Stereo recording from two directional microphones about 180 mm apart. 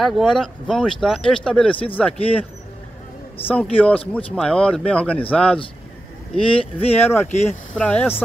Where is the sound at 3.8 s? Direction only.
5° left (ahead or behind).